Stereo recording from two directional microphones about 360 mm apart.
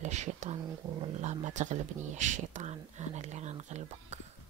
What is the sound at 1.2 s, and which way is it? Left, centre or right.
Speech, centre.